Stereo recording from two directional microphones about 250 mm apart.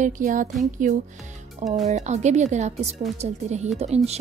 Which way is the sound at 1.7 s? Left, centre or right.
Right.